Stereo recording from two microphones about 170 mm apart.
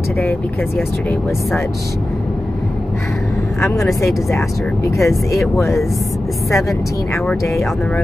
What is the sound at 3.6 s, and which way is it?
Speech, 15° left (ahead or behind).